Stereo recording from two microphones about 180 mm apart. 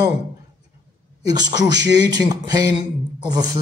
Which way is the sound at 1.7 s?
20° right (ahead or behind).